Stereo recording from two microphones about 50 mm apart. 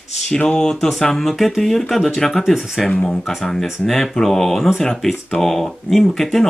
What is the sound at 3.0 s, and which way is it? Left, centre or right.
Speech, centre.